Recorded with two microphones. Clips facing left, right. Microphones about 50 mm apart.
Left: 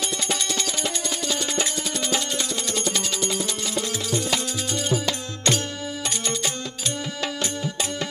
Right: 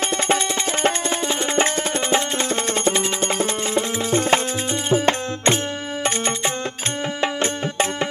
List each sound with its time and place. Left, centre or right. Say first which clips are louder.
0.3 s music: right 6 dB; right